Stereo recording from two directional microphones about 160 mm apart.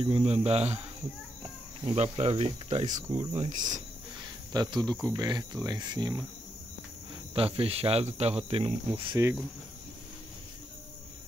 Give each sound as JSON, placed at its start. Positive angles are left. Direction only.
{"t": 0.0, "sound": "speech", "side_deg": -35}
{"t": 2.0, "sound": "speech", "side_deg": -40}
{"t": 4.5, "sound": "speech", "side_deg": -25}
{"t": 7.3, "sound": "speech", "side_deg": -35}